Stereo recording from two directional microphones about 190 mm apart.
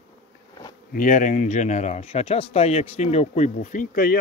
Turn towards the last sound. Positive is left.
turn(degrees=45)  # may be behind; listen again after turning